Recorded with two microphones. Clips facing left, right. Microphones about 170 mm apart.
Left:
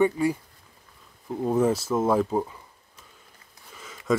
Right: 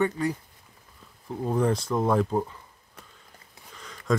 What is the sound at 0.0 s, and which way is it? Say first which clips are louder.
Speech: left 4 dB; 10° left (ahead or behind).